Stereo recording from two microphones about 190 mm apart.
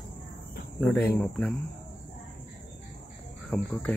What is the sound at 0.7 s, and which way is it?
Speech, 5° left (ahead or behind).